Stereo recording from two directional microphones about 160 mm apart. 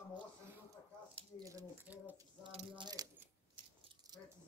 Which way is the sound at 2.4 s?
35° right (ahead or behind).